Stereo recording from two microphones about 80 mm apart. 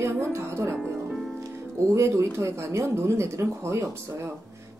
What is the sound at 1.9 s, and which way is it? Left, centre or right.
Speech, right.